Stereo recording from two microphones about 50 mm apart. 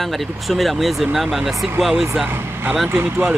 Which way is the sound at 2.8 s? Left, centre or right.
Right.